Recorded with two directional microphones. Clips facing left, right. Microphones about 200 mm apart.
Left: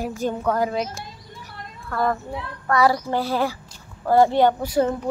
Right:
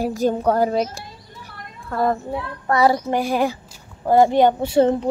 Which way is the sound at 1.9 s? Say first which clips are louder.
Right 3 dB; 25° right (ahead or behind).